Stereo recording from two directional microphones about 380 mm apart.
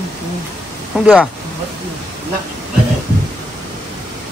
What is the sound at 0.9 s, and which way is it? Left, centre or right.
Speech, centre.